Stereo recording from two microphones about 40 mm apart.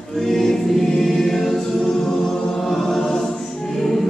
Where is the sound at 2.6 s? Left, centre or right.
Centre.